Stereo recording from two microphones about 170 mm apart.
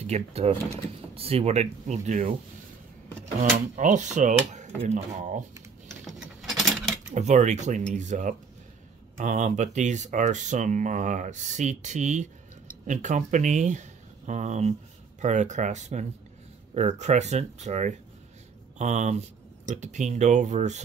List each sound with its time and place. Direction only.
0.0 s speech: 40° right (ahead or behind)
3.3 s speech: 45° right (ahead or behind)
5.9 s keys jangling: centre (ahead or behind)
7.2 s speech: 45° right (ahead or behind)